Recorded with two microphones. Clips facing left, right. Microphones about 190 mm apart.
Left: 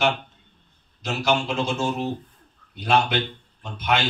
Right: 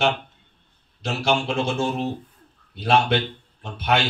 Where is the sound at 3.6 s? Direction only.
30° right (ahead or behind).